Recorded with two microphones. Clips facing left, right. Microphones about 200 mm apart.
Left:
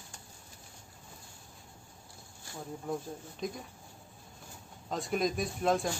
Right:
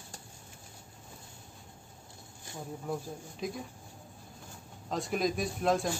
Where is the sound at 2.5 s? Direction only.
20° right (ahead or behind).